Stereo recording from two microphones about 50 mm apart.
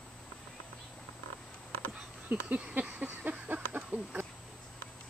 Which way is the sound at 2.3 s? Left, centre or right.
Right.